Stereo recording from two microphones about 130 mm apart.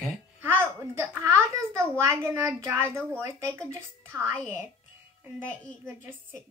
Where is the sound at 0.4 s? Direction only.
15° right (ahead or behind).